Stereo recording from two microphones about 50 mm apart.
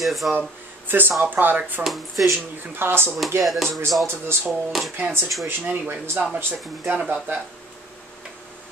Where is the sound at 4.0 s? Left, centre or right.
Right.